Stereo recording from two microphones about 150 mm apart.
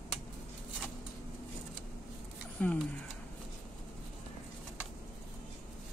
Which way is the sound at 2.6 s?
10° left (ahead or behind).